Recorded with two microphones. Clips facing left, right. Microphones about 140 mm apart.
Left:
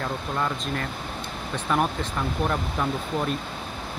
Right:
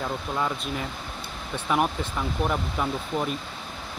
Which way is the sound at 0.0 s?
5° right (ahead or behind).